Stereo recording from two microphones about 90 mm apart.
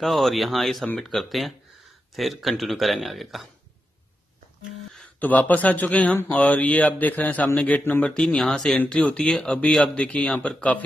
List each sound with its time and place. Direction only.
0.0 s speech: centre (ahead or behind)
5.2 s speech: 15° left (ahead or behind)